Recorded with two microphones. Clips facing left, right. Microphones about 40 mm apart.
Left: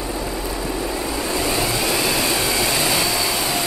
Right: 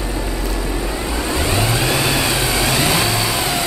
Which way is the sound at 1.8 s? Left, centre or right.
Right.